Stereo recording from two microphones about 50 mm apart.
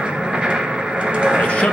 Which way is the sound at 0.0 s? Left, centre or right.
Centre.